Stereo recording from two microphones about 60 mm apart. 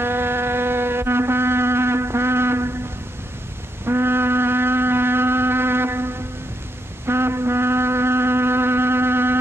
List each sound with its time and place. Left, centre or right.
0.0 s a sound: right
3.8 s shofar: right
7.1 s music: right